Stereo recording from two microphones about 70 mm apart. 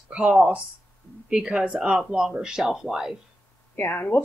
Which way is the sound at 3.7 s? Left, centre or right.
Left.